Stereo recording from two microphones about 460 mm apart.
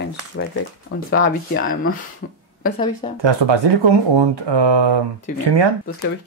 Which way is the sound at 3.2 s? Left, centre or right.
Right.